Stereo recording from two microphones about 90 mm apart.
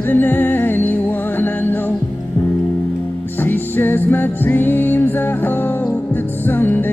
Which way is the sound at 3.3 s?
20° left (ahead or behind).